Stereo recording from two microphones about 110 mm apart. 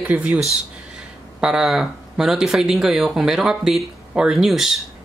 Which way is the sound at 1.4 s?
5° right (ahead or behind).